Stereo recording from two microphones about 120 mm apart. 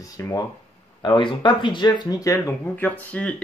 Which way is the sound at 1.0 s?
40° left (ahead or behind).